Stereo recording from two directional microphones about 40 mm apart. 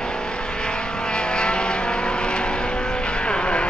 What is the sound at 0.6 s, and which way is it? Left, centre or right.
Vehicle, left.